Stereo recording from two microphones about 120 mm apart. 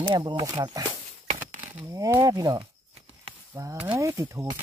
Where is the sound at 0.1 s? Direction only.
40° right (ahead or behind).